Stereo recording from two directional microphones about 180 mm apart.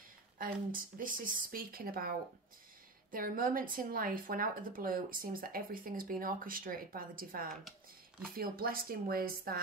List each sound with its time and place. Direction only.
0.4 s a woman's voice: 50° right (ahead or behind)